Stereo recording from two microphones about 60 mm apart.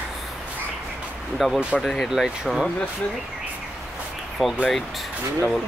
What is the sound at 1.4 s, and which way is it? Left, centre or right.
Speech, centre.